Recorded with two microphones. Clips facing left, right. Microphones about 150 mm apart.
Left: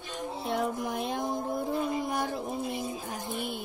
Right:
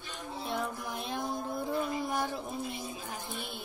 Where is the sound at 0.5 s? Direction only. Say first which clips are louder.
Left 8 dB; 15° left (ahead or behind).